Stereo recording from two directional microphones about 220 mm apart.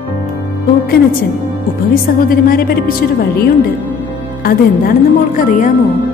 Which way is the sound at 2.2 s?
40° left (ahead or behind).